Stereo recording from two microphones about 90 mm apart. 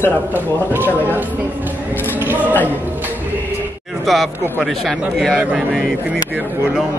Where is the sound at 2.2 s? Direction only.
20° right (ahead or behind).